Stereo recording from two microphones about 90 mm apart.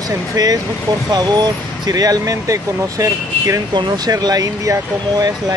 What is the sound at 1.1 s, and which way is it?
Speech, 50° right (ahead or behind).